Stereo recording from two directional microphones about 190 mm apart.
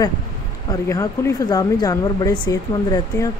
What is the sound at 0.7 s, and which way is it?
Speech, 15° left (ahead or behind).